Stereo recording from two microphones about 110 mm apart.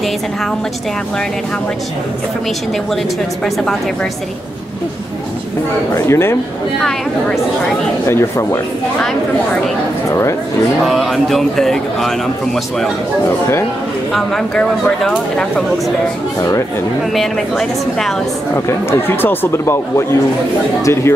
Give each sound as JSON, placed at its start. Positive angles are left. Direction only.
{"t": 5.9, "sound": "speech", "side_deg": 25}
{"t": 6.8, "sound": "speech", "side_deg": 5}
{"t": 8.1, "sound": "speech", "side_deg": 25}
{"t": 10.9, "sound": "speech", "side_deg": 0}
{"t": 14.1, "sound": "speech", "side_deg": 5}
{"t": 17.1, "sound": "speech", "side_deg": 5}
{"t": 18.5, "sound": "speech", "side_deg": 25}